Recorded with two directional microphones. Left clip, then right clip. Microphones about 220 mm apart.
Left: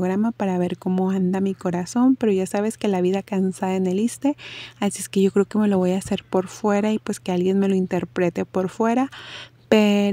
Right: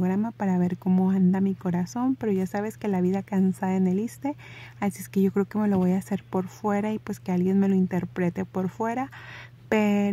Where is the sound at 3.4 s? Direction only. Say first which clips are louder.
Left 3 dB; 35° left (ahead or behind).